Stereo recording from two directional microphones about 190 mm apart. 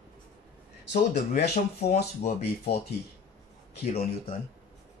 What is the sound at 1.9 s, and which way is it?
Speech, 35° left (ahead or behind).